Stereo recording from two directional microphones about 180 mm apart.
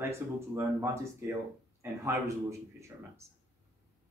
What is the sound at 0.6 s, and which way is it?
A man's voice, 15° right (ahead or behind).